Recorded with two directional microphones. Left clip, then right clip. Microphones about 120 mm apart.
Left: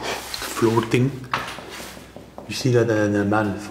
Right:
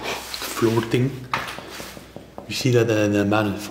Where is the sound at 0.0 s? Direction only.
Centre (ahead or behind).